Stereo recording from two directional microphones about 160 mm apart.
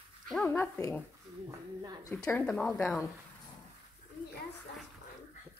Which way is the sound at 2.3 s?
10° left (ahead or behind).